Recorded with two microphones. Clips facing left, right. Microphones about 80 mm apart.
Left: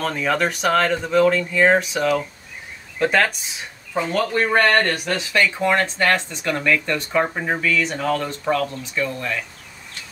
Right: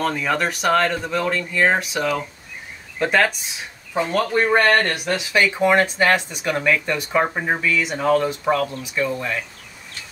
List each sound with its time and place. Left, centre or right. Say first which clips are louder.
0.0 s speech: even; centre